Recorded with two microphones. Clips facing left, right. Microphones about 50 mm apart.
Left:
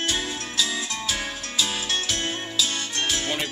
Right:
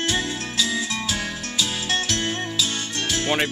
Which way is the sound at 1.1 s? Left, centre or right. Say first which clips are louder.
Right 2 dB; centre.